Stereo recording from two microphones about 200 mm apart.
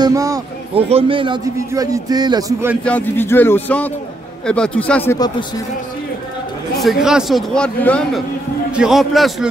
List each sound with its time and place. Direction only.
0.0 s a man's voice: 15° right (ahead or behind)
0.7 s a man's voice: 30° right (ahead or behind); by 2.8 s 15° right (ahead or behind)
2.8 s a man's voice: 10° left (ahead or behind)
6.8 s a man's voice: centre (ahead or behind)